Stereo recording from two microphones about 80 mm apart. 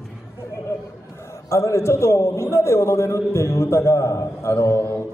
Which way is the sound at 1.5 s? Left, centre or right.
Left.